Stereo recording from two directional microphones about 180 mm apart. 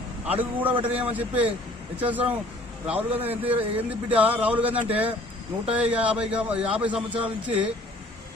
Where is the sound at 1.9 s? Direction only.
10° right (ahead or behind).